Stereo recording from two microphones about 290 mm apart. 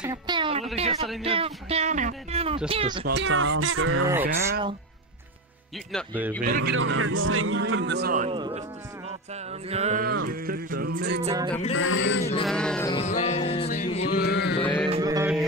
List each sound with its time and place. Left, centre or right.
0.0 s a sound: centre
0.7 s speech: right
3.1 s a man's voice: right
4.1 s speech: centre
5.9 s speech: centre
6.4 s speech: right
6.7 s a man's voice: right; by 8.6 s centre
9.7 s speech: right
10.2 s music: right
11.2 s speech: centre
11.7 s speech: left
12.4 s speech: centre
12.9 s a sound: left
14.9 s mantra: centre